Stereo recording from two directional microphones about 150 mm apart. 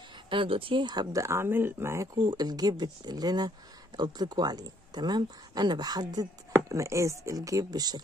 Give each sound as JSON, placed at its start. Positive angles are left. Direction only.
{"t": 0.3, "sound": "speech", "side_deg": -35}